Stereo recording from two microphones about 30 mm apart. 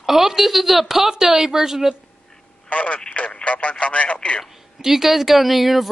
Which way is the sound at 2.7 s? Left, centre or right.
Left.